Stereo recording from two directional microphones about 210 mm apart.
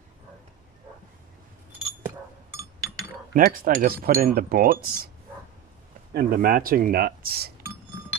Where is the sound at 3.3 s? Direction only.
40° right (ahead or behind).